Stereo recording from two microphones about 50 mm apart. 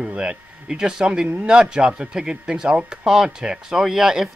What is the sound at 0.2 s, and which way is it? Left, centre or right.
Speech, centre.